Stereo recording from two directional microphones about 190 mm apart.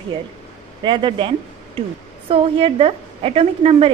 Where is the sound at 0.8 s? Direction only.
25° right (ahead or behind).